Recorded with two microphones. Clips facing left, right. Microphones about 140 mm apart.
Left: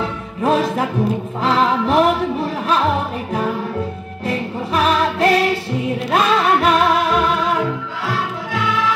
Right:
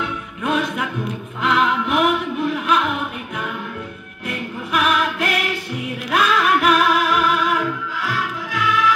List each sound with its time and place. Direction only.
0.0 s music: 30° left (ahead or behind)